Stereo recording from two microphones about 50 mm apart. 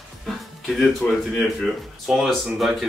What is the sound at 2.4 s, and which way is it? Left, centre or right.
Speech, centre.